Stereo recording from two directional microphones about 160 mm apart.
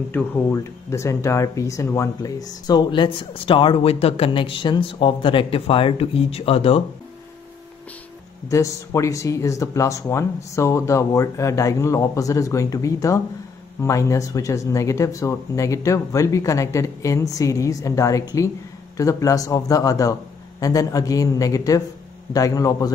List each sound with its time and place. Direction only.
0.1 s speech: 15° left (ahead or behind); by 6.8 s 35° left (ahead or behind)
8.5 s speech: 20° left (ahead or behind)